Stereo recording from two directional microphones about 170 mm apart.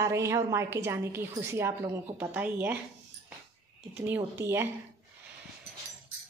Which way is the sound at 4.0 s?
10° right (ahead or behind).